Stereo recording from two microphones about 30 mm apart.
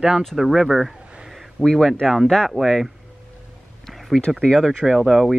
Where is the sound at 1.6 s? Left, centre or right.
Left.